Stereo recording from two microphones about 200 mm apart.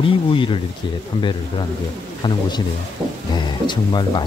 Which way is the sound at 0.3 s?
25° left (ahead or behind).